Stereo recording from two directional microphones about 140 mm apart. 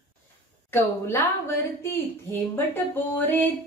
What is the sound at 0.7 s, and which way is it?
Speech, 15° left (ahead or behind).